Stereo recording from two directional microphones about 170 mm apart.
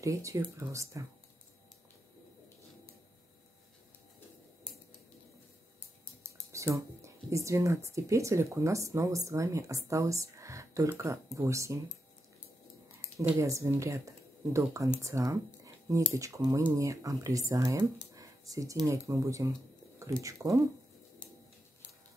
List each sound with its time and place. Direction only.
0.0 s speech: 20° right (ahead or behind)
6.5 s speech: 15° right (ahead or behind)
13.2 s speech: 15° right (ahead or behind)
18.1 s a sound: 20° right (ahead or behind)
18.9 s speech: 20° right (ahead or behind)